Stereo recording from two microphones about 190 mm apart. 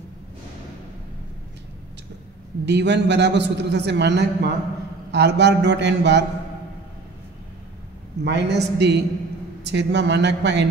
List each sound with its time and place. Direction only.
2.6 s a man's voice: 65° right (ahead or behind)
8.2 s a man's voice: 65° right (ahead or behind)